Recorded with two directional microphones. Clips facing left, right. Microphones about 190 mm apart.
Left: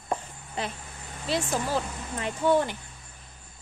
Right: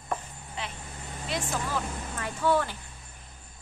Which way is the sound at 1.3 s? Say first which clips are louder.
Left 5 dB; 30° left (ahead or behind).